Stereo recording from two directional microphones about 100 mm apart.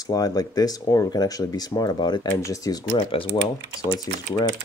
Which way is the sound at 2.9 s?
60° left (ahead or behind).